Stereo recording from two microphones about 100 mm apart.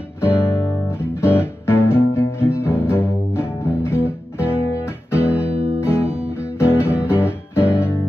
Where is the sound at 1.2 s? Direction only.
25° left (ahead or behind).